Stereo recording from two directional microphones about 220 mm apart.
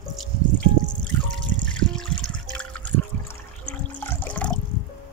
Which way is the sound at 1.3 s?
5° left (ahead or behind).